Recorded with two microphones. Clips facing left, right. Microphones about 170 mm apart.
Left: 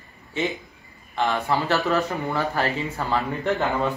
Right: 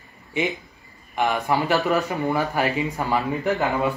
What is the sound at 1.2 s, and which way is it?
Speech, 15° right (ahead or behind).